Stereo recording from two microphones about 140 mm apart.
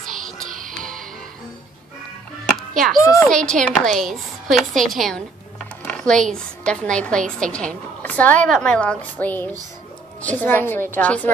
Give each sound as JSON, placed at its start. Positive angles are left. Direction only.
{"t": 0.1, "sound": "music", "side_deg": -65}
{"t": 3.0, "sound": "a woman's voice", "side_deg": 20}
{"t": 3.3, "sound": "a woman's voice", "side_deg": 5}